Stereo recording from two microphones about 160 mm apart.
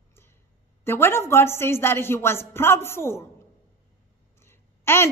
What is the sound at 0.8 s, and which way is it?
Speech, 15° left (ahead or behind).